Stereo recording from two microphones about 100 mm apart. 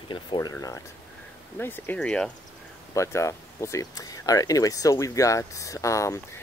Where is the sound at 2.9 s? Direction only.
30° left (ahead or behind).